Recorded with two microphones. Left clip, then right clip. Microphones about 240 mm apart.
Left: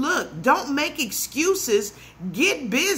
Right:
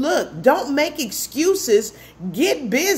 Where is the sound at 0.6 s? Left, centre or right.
Left.